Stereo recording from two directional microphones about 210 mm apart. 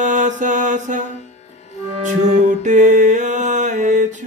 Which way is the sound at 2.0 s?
35° right (ahead or behind).